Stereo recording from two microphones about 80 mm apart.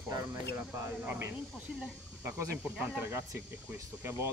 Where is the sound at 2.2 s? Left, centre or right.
Right.